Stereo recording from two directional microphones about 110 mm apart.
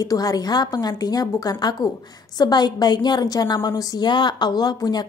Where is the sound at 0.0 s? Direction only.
35° left (ahead or behind).